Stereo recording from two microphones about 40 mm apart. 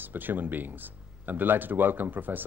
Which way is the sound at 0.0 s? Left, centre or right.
Right.